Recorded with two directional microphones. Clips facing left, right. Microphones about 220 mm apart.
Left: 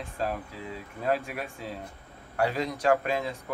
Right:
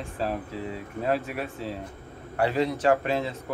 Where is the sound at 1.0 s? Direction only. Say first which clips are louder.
Right 1 dB; 40° right (ahead or behind).